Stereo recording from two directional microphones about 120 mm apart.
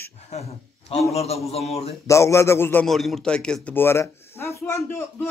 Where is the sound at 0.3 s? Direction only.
65° left (ahead or behind).